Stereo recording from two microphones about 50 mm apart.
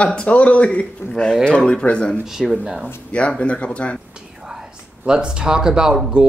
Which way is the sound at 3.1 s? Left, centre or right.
Left.